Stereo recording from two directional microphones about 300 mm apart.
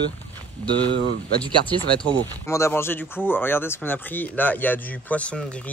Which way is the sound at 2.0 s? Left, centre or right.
Centre.